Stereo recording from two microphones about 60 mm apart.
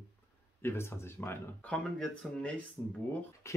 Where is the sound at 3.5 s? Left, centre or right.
Left.